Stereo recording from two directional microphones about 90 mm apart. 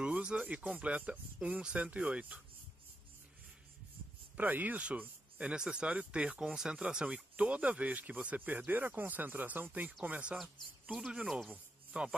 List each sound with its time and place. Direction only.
0.0 s speech: 10° right (ahead or behind)
4.4 s speech: 20° right (ahead or behind)
10.3 s speech: centre (ahead or behind)
11.5 s a sound: 10° right (ahead or behind)